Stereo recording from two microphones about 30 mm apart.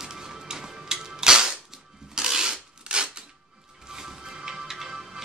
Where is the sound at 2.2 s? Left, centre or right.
Right.